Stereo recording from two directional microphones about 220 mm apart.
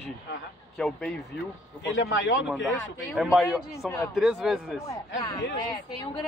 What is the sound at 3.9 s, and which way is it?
Speech, 10° left (ahead or behind).